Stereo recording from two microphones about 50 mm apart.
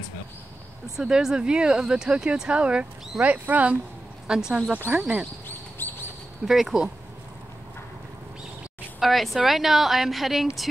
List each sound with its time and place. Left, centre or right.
0.9 s speech: centre; by 3.7 s right
4.3 s speech: centre
5.8 s a sound: left
6.4 s speech: centre
9.0 s a woman's voice: centre